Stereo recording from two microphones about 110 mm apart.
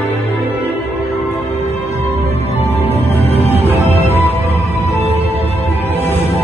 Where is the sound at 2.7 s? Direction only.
75° left (ahead or behind).